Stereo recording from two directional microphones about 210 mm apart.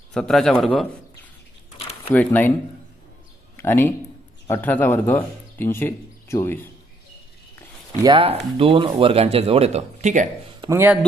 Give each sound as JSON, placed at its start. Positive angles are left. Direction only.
{"t": 0.1, "sound": "a man's voice", "side_deg": 0}
{"t": 1.8, "sound": "a sound", "side_deg": 30}
{"t": 2.1, "sound": "speech", "side_deg": 10}
{"t": 3.5, "sound": "speech", "side_deg": 10}
{"t": 8.0, "sound": "speech", "side_deg": -25}
{"t": 10.6, "sound": "speech", "side_deg": -10}